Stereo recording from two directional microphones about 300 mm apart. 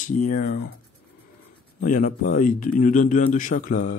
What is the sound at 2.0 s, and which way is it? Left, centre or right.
Speech, left.